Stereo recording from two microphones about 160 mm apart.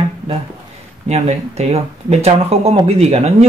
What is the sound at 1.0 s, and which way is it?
Speech, 40° right (ahead or behind).